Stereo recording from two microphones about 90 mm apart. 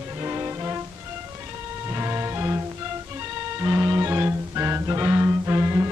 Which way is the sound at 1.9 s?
30° right (ahead or behind).